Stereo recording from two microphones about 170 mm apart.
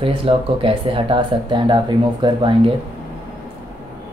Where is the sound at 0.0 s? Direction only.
35° right (ahead or behind).